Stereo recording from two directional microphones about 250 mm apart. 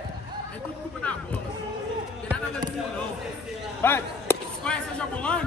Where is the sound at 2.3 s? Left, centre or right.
Centre.